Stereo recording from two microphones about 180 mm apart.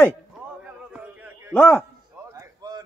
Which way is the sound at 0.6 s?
10° right (ahead or behind).